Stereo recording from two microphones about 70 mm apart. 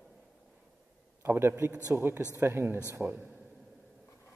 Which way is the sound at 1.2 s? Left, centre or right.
Right.